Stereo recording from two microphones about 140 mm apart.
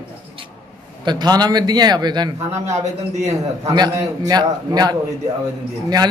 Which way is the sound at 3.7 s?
25° right (ahead or behind).